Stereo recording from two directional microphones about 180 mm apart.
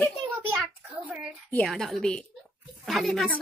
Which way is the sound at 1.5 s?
5° left (ahead or behind).